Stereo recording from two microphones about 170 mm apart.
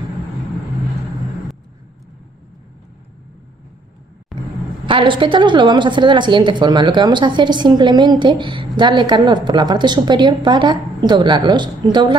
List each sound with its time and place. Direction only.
4.3 s vehicle: centre (ahead or behind)
4.8 s a woman's voice: 30° right (ahead or behind)